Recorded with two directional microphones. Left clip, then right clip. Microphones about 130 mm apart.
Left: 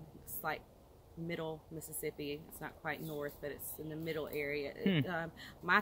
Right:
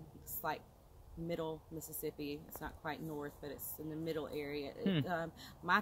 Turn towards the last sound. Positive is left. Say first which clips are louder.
# left 2 dB
turn(degrees=0)  # may be behind; listen again after turning